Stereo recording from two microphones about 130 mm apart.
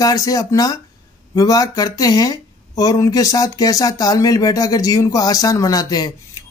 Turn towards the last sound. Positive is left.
turn(degrees=30)  # may be behind; listen again after turning